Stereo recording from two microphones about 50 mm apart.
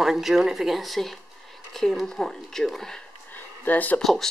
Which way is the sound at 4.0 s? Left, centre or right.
Centre.